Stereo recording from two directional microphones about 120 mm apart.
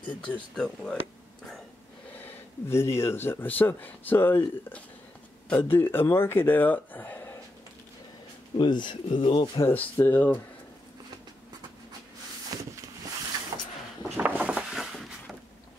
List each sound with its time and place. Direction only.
0.3 s speech: 5° left (ahead or behind)
2.1 s speech: 20° left (ahead or behind)
8.5 s speech: 40° left (ahead or behind)
9.6 s speech: 15° left (ahead or behind)
12.5 s a sound: 30° right (ahead or behind)
14.1 s a sound: 15° right (ahead or behind)